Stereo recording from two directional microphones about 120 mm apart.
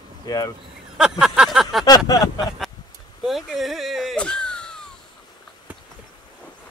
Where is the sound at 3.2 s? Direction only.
Centre (ahead or behind).